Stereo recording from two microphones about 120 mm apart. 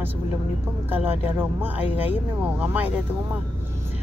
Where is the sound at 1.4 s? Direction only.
15° right (ahead or behind).